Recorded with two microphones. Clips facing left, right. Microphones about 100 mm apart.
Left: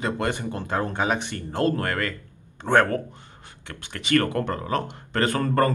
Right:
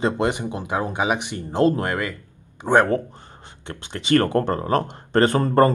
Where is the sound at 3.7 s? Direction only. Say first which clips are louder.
Right 5 dB; 25° right (ahead or behind).